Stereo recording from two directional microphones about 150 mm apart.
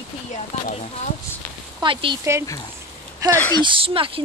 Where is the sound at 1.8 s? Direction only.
35° right (ahead or behind).